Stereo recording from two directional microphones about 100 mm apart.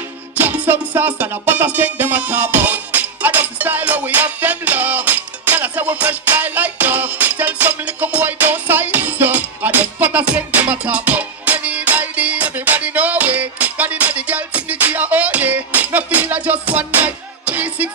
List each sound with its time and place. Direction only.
0.4 s music: 20° right (ahead or behind)